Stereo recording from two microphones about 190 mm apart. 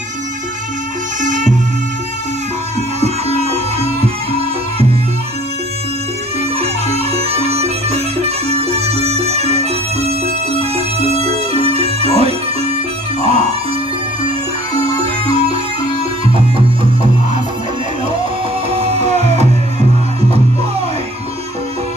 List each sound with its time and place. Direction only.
1.2 s music: 40° right (ahead or behind)
3.0 s music: 35° right (ahead or behind)
6.6 s music: 30° right (ahead or behind)
15.2 s music: 30° right (ahead or behind)
18.7 s music: 35° right (ahead or behind)